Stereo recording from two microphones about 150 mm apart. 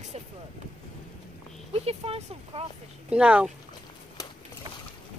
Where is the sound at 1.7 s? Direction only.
40° right (ahead or behind).